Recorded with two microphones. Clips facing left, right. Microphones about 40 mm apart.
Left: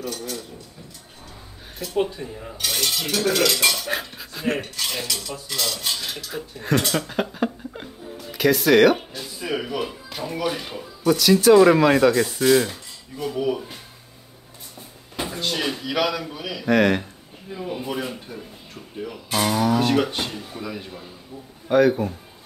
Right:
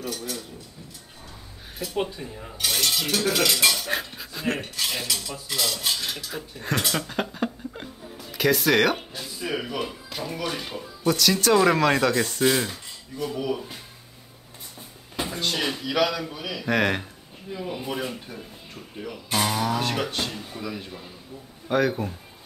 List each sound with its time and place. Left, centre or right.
0.0 s cutlery: centre
1.8 s cutlery: centre
13.2 s speech: centre
15.1 s speech: centre
17.6 s cutlery: centre